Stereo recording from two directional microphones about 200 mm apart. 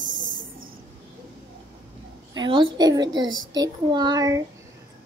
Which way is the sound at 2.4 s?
25° right (ahead or behind).